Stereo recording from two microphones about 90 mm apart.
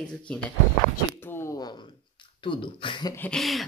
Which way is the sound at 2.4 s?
70° left (ahead or behind).